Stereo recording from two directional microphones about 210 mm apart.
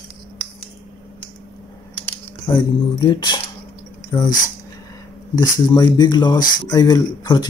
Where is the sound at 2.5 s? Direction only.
20° left (ahead or behind).